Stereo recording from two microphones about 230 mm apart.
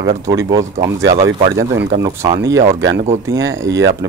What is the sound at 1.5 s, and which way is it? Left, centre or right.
Speech, right.